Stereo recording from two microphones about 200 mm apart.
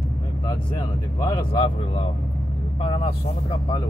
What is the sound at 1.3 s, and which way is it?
Speech, 25° left (ahead or behind).